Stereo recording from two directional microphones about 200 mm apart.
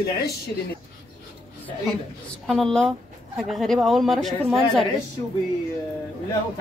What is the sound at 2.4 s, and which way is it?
Speech, centre (ahead or behind).